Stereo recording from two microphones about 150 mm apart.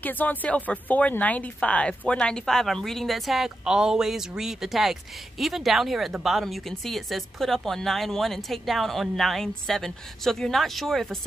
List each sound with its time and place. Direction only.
0.0 s speech: 10° left (ahead or behind)